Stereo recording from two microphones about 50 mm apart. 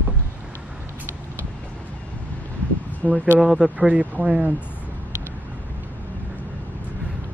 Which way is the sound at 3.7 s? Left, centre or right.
Right.